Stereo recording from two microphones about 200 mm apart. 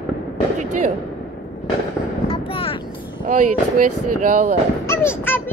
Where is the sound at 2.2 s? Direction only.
30° left (ahead or behind).